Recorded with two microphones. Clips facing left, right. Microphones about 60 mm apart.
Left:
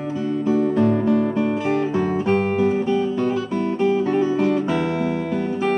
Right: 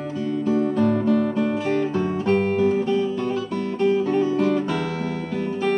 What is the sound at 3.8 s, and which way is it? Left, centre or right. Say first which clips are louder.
Music: even; centre.